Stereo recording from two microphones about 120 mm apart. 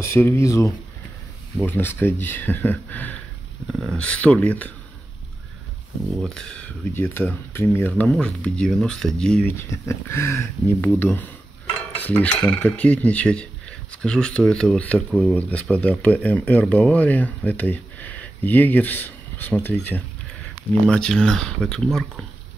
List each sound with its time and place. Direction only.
0.0 s speech: 20° left (ahead or behind)
3.6 s speech: centre (ahead or behind)
6.2 s speech: 5° left (ahead or behind)
6.9 s speech: 20° left (ahead or behind)
9.7 s speech: 20° left (ahead or behind); by 22.2 s 5° left (ahead or behind)